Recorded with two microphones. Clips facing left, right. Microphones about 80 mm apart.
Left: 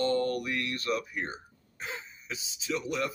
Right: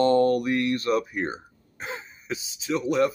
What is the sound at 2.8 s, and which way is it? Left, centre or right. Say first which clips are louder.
Speech: right 11 dB; right.